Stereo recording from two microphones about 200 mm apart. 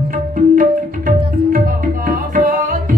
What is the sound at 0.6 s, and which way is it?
Music, 45° right (ahead or behind).